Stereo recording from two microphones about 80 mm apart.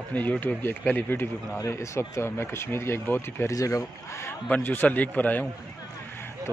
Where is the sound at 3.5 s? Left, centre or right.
Left.